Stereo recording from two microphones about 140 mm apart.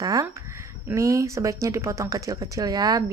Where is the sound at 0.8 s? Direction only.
20° right (ahead or behind).